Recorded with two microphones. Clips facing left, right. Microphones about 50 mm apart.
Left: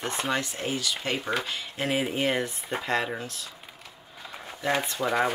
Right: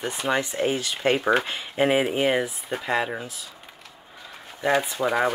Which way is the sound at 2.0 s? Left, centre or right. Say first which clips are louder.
Right 4 dB; centre.